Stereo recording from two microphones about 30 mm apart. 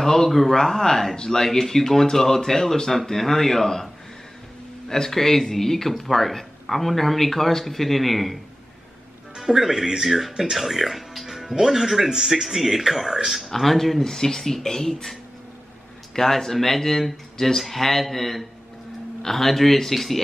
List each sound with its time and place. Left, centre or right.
0.0 s a sound: centre
0.3 s speech: centre
0.6 s speech: centre
4.8 s speech: centre
9.4 s speech: centre
10.6 s speech: centre
13.7 s speech: centre
14.0 s speech: centre
16.2 s speech: centre